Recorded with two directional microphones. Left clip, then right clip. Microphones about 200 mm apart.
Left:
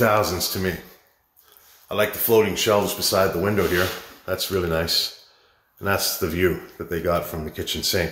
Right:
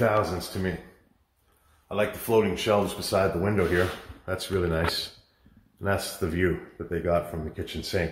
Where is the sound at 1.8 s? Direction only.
Centre (ahead or behind).